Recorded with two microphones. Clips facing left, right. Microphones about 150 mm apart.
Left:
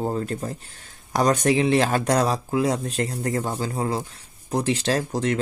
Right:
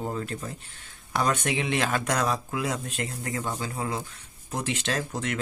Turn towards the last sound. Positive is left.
turn(degrees=35)  # may be behind; listen again after turning